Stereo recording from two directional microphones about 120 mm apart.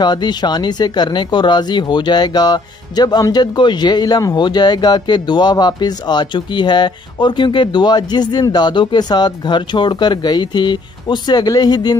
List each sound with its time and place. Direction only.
0.0 s speech: 35° left (ahead or behind)